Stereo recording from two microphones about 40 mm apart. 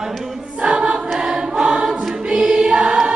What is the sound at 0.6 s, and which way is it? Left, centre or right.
Choir, right.